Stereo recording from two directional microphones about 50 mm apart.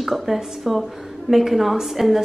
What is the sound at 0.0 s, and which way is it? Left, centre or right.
Speech, centre.